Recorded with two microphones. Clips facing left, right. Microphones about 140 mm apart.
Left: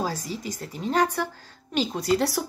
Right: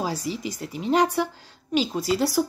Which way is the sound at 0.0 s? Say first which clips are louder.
Right 2 dB; 10° right (ahead or behind).